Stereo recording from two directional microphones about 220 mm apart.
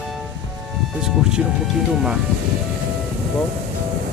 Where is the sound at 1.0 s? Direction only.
5° right (ahead or behind).